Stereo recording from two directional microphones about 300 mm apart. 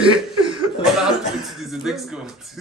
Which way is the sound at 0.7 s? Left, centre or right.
Centre.